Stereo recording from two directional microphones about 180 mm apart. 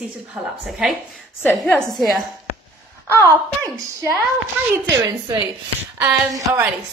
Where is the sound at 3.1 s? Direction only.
15° right (ahead or behind).